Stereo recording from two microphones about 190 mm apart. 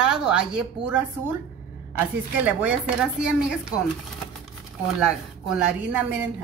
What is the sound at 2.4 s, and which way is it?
Speech, 5° right (ahead or behind).